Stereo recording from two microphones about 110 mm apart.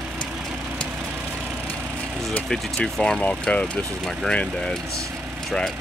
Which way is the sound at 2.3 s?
10° left (ahead or behind).